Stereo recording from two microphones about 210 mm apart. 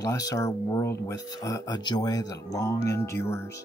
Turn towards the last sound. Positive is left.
turn(degrees=10)  # may be behind; listen again after turning